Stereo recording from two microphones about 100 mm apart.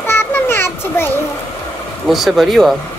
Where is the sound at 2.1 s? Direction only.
Centre (ahead or behind).